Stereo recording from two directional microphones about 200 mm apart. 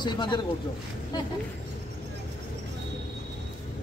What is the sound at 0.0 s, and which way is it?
Speech, 20° left (ahead or behind).